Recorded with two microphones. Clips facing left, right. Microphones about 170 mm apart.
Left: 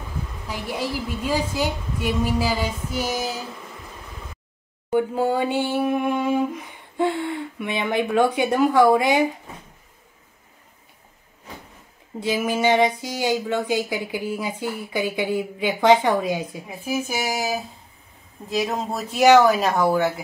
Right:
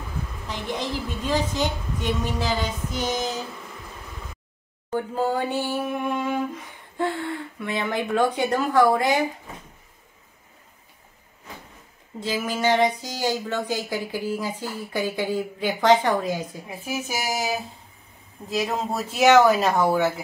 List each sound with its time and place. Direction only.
0.5 s speech: 10° left (ahead or behind)
4.9 s speech: 15° left (ahead or behind)
12.2 s speech: 15° left (ahead or behind)
16.7 s speech: centre (ahead or behind)